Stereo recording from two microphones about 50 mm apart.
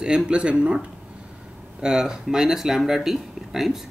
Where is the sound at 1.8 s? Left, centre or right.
Centre.